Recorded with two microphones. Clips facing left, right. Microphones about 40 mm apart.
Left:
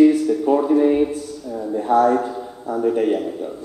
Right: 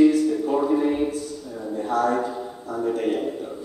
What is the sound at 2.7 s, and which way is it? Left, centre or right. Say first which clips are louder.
Speech: left 6 dB; left.